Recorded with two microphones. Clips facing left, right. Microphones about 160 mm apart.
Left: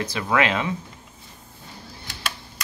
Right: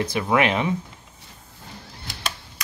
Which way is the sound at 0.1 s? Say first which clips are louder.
Right 1 dB; 20° right (ahead or behind).